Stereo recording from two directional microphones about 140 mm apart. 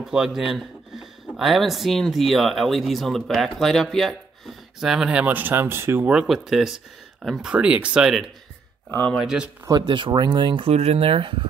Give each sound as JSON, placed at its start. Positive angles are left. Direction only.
{"t": 0.0, "sound": "speech", "side_deg": -5}
{"t": 8.9, "sound": "speech", "side_deg": 10}
{"t": 9.2, "sound": "speech", "side_deg": -5}
{"t": 9.7, "sound": "speech", "side_deg": -30}